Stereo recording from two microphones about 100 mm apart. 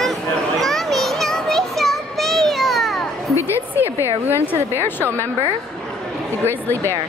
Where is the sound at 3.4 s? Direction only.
30° left (ahead or behind).